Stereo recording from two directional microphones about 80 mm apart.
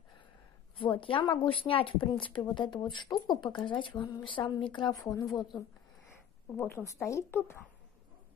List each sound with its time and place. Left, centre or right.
0.7 s speech: left
2.9 s a woman's voice: left
3.5 s speech: left
4.0 s a woman's voice: left
5.0 s a woman's voice: left
6.5 s speech: left